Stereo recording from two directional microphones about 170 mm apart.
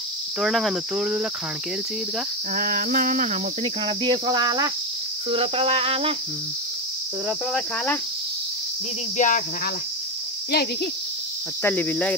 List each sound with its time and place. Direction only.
0.4 s cricket: centre (ahead or behind)
2.5 s cricket: 55° right (ahead or behind)
3.6 s cricket: 30° right (ahead or behind)
7.5 s cricket: 10° left (ahead or behind)
9.1 s speech: 50° left (ahead or behind)
10.5 s speech: 65° left (ahead or behind)
11.6 s cricket: 10° left (ahead or behind)